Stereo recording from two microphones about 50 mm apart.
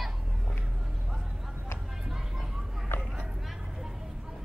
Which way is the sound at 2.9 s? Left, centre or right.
Left.